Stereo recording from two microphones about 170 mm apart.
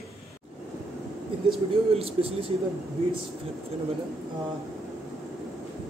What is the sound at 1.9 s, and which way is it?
Speech, 35° right (ahead or behind).